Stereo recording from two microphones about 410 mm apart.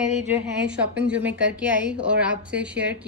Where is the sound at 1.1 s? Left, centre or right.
Centre.